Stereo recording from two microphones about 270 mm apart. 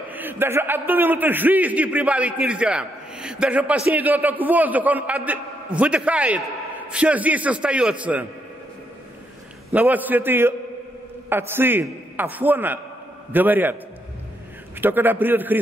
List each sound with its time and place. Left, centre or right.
0.1 s a man's voice: centre
9.7 s a man's voice: centre
14.8 s a man's voice: centre